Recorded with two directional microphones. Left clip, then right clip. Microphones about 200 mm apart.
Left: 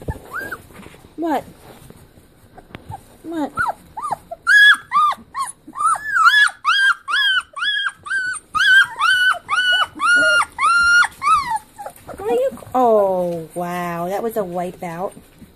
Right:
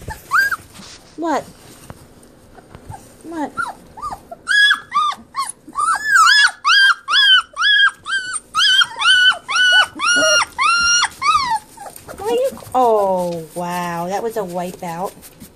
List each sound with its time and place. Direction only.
3.3 s dog: 10° left (ahead or behind)
8.6 s dog: 20° left (ahead or behind)
9.5 s dog: 10° left (ahead or behind)
12.2 s a sound: 20° left (ahead or behind)